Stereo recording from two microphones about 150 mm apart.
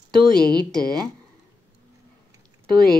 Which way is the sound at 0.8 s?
25° right (ahead or behind).